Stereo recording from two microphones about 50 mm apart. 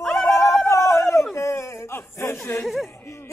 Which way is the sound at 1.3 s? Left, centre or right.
Left.